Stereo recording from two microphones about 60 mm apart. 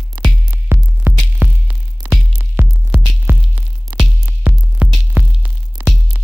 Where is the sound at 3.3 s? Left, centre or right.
Right.